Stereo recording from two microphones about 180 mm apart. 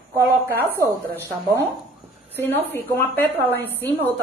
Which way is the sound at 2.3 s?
10° left (ahead or behind).